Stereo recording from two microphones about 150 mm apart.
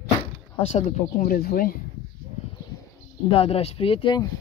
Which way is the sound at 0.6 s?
45° left (ahead or behind).